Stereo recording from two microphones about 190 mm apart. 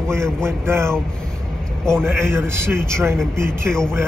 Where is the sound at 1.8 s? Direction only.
5° left (ahead or behind).